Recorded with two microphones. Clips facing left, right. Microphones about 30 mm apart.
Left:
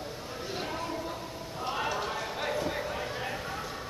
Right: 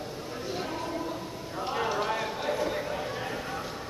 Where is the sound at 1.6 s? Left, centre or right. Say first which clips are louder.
Right 3 dB; centre.